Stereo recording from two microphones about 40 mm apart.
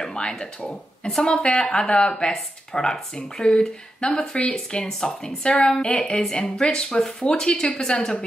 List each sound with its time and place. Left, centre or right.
0.0 s a sound: centre
0.7 s speech: centre
1.2 s speech: left